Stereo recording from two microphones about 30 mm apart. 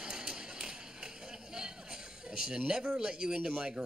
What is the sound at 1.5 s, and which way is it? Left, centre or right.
A man's voice, right.